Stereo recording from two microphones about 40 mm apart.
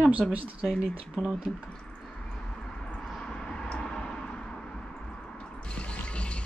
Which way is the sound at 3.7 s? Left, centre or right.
Left.